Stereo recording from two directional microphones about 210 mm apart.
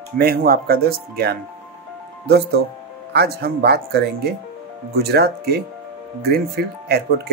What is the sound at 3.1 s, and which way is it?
Speech, 50° right (ahead or behind).